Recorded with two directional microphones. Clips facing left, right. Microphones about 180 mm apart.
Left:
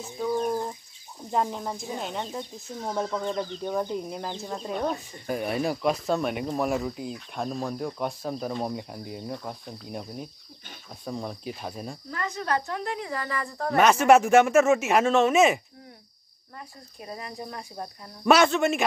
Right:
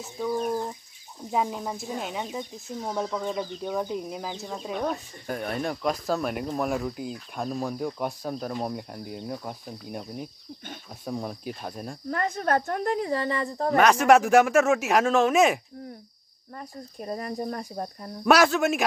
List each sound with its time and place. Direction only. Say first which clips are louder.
0.2 s speech: left 1 dB; 5° right (ahead or behind)
12.1 s speech: right 4 dB; 50° right (ahead or behind); by 13.7 s 25° right (ahead or behind)
13.7 s speech: even; centre (ahead or behind)
16.5 s speech: right 5 dB; 45° right (ahead or behind)
18.2 s speech: even; centre (ahead or behind)